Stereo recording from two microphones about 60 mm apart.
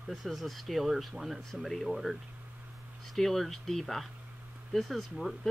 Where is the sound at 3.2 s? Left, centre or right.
Centre.